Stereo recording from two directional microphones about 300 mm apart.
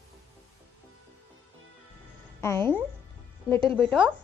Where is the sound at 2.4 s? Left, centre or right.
Centre.